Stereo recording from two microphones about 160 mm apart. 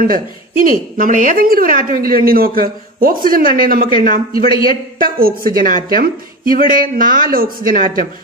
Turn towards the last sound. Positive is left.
turn(degrees=-60)  # may be behind; listen again after turning